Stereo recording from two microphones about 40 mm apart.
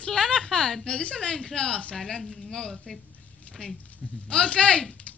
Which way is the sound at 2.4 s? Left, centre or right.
Centre.